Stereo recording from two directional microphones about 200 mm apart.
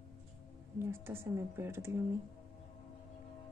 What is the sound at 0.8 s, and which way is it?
Speech, 10° right (ahead or behind).